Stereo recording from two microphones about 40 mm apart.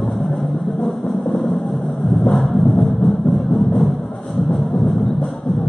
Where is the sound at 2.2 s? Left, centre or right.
Centre.